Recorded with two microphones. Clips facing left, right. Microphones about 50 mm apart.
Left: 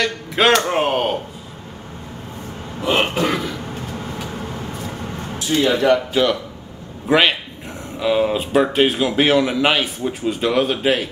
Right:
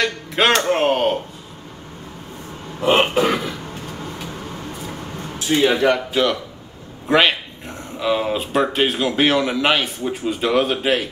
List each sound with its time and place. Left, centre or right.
0.0 s speech: centre
2.8 s speech: centre
5.5 s speech: centre
6.2 s speech: centre